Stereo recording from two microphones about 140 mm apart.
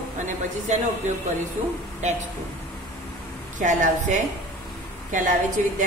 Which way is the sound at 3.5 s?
60° right (ahead or behind).